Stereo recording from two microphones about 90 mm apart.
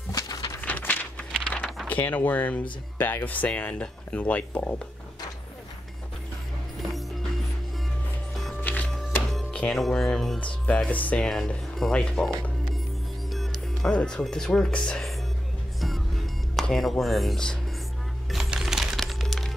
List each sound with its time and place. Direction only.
0.1 s a sound: 40° left (ahead or behind)
0.6 s a sound: 20° left (ahead or behind)
1.9 s speech: 20° left (ahead or behind)
8.5 s music: 20° left (ahead or behind)
9.3 s music: centre (ahead or behind)
9.6 s speech: 5° left (ahead or behind)
10.9 s speech: 15° left (ahead or behind)
11.2 s speech: 5° left (ahead or behind)
13.3 s music: centre (ahead or behind)
13.9 s speech: 10° left (ahead or behind)
15.8 s music: centre (ahead or behind)